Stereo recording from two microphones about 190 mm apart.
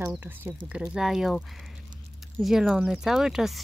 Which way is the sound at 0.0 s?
10° right (ahead or behind).